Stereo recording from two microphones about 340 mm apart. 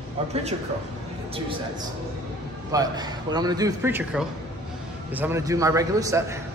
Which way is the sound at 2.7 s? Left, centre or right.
Centre.